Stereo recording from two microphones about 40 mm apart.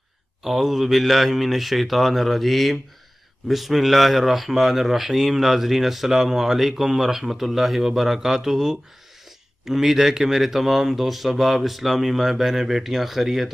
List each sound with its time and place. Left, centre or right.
0.4 s speech: centre